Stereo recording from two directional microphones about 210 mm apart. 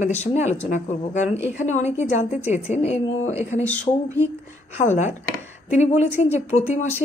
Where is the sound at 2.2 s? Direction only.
5° right (ahead or behind).